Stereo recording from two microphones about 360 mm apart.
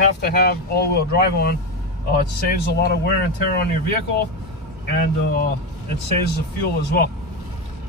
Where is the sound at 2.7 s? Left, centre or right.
Left.